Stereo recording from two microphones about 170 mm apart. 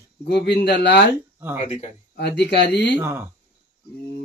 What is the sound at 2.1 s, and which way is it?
Speech, 80° left.